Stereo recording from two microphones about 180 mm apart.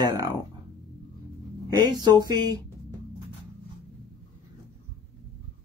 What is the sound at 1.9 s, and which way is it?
Speech, 25° right (ahead or behind).